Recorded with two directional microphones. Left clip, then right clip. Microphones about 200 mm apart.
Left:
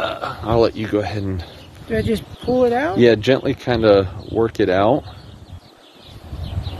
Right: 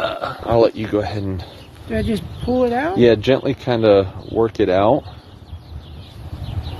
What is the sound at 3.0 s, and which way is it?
Speech, 15° left (ahead or behind).